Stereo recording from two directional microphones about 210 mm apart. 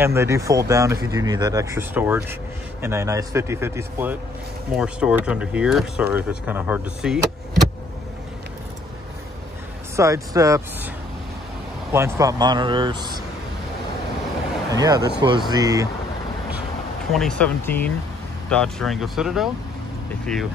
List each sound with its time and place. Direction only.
0.0 s speech: 10° right (ahead or behind)
9.9 s speech: 15° right (ahead or behind)
11.9 s speech: 15° right (ahead or behind)
14.7 s speech: 15° right (ahead or behind)
17.1 s speech: 5° left (ahead or behind)